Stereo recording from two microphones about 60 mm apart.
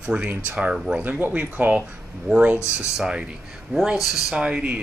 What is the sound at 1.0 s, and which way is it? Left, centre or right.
Speech, right.